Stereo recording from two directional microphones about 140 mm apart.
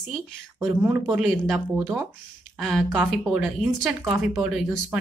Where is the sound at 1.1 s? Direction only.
5° right (ahead or behind).